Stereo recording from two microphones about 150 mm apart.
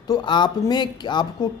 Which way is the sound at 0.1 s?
30° left (ahead or behind).